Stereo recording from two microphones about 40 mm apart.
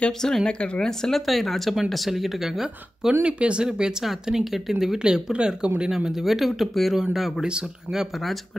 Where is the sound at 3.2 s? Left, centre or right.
Right; by 4.7 s centre.